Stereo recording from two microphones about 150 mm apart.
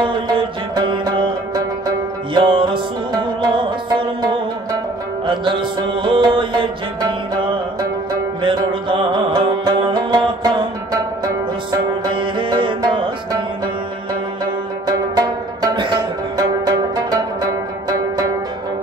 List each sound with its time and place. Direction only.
0.0 s music: 35° right (ahead or behind)
12.0 s music: 30° right (ahead or behind)
14.9 s music: 25° right (ahead or behind)